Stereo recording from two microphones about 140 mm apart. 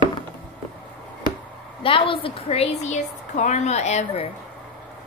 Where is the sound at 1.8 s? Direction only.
40° left (ahead or behind).